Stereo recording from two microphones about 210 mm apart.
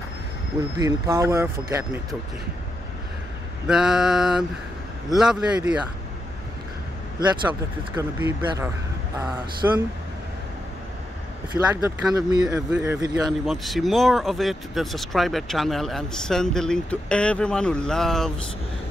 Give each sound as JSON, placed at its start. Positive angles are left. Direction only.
{"t": 0.7, "sound": "speech", "side_deg": -15}
{"t": 3.6, "sound": "speech", "side_deg": -5}
{"t": 7.9, "sound": "speech", "side_deg": -10}
{"t": 11.7, "sound": "speech", "side_deg": -15}
{"t": 13.5, "sound": "speech", "side_deg": 0}